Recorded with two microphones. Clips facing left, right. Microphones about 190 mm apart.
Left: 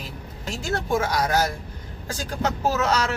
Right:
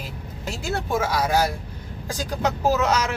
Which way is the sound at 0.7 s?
10° right (ahead or behind).